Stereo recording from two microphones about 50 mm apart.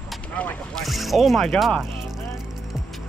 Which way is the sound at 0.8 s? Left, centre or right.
Centre.